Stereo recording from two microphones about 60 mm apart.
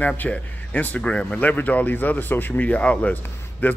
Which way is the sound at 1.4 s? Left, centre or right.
Left.